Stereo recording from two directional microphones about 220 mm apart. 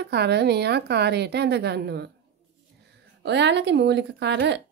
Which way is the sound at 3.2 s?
50° right (ahead or behind).